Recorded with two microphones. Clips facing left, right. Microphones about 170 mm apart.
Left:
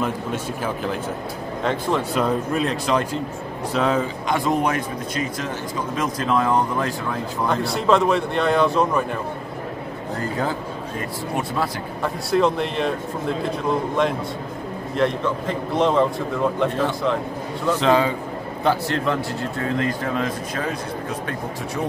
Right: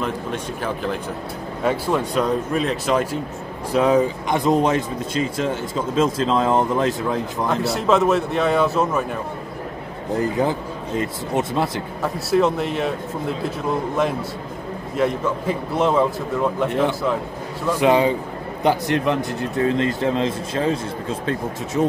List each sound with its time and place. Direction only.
1.6 s a man's voice: 10° right (ahead or behind)
3.7 s speech: 15° right (ahead or behind)
7.4 s speech: centre (ahead or behind)
10.1 s speech: 20° right (ahead or behind)
12.0 s speech: 5° right (ahead or behind)
15.0 s a man's voice: 5° right (ahead or behind)
17.6 s a man's voice: 10° right (ahead or behind)